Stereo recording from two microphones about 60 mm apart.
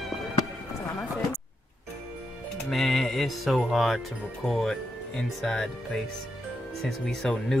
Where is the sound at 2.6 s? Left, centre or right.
Centre.